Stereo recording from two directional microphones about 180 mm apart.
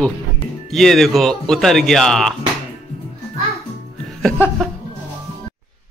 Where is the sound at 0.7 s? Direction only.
Centre (ahead or behind).